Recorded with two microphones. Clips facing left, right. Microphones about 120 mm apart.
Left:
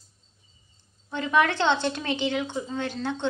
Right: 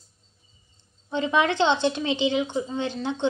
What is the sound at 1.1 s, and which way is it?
A woman's voice, 20° right (ahead or behind).